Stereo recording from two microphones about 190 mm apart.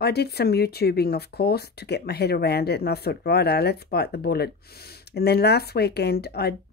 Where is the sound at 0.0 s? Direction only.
60° left (ahead or behind).